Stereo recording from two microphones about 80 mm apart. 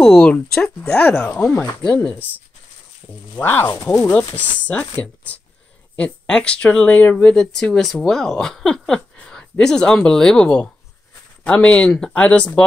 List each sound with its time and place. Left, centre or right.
0.0 s speech: centre
3.3 s speech: left
3.7 s speech: left
4.5 s speech: centre